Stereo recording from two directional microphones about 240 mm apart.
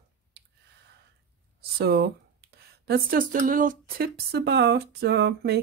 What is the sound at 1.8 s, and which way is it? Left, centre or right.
Speech, right.